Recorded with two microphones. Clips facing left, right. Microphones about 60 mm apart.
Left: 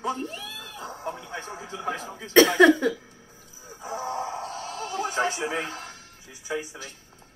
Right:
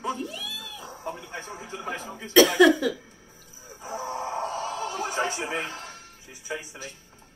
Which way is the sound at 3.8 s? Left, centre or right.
Left.